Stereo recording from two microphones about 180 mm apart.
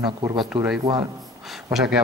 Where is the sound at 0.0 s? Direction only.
25° right (ahead or behind).